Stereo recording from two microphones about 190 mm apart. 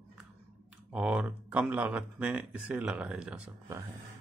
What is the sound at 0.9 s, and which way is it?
Speech, 5° right (ahead or behind).